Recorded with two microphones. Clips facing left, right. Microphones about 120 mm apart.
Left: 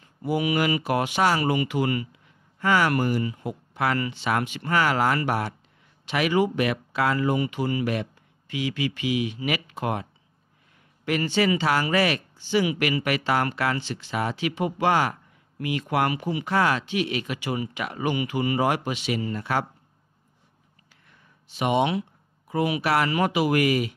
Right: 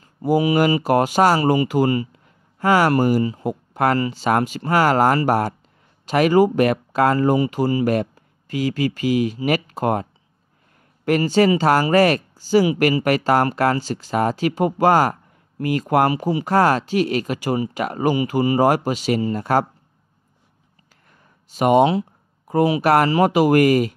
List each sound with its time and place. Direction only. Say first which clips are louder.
0.0 s speech: right 7 dB; 40° right (ahead or behind)
2.1 s a sound: right 4 dB; 45° right (ahead or behind)
2.9 s speech: right 7 dB; 40° right (ahead or behind)
11.1 s speech: right 7 dB; 40° right (ahead or behind)
21.5 s speech: right 8 dB; 45° right (ahead or behind)